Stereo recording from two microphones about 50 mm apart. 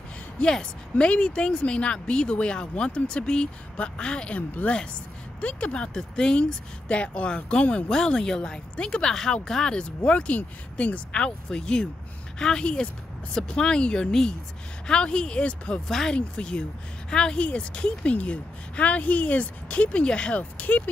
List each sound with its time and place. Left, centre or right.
0.4 s speech: centre
4.4 s a woman's voice: left
15.9 s speech: centre; by 20.9 s left